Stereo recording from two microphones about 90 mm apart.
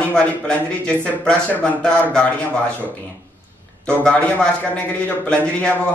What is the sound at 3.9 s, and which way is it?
A man's voice, 15° left (ahead or behind).